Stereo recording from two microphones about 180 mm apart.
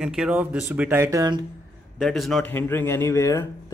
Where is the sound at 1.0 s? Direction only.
20° right (ahead or behind).